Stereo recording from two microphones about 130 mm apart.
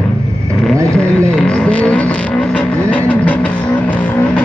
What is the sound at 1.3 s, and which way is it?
Vehicle, 5° left (ahead or behind).